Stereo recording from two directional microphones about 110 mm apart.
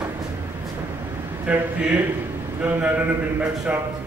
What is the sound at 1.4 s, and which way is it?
A man's voice, 15° right (ahead or behind).